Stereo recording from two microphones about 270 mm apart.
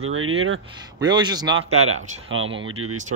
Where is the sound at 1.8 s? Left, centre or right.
Right.